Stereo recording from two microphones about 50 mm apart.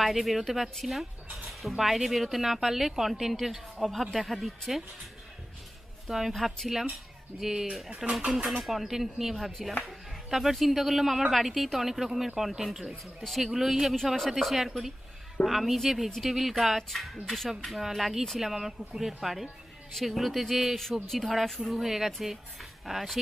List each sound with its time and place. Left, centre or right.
0.0 s speech: centre
6.0 s a woman's voice: centre
6.3 s speech: centre
8.0 s speech: right
8.6 s a man's voice: centre